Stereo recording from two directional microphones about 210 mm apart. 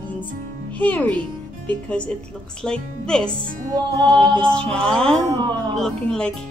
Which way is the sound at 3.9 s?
20° right (ahead or behind).